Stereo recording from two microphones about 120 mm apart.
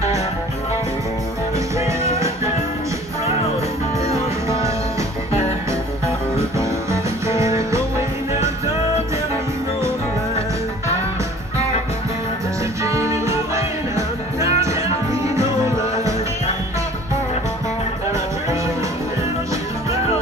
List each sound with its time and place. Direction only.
1.8 s music: 25° right (ahead or behind)
5.7 s music: 25° right (ahead or behind)
12.8 s music: 25° right (ahead or behind)